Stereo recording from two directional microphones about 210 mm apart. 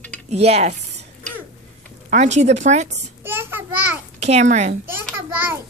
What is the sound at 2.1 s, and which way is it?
Speech, 35° right (ahead or behind).